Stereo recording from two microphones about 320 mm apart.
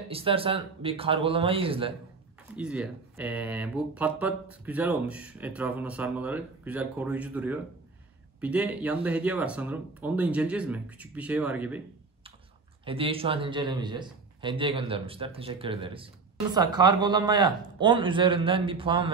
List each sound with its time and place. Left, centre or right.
0.1 s a man's voice: centre
2.5 s speech: centre
12.8 s a man's voice: centre